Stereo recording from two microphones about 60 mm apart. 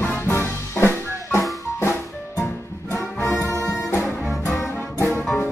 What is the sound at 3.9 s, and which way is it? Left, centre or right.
Music, left.